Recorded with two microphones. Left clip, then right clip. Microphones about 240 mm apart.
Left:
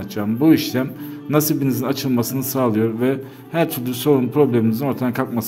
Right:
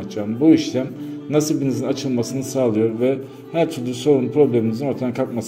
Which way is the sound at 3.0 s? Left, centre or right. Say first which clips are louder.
Right 1 dB; left.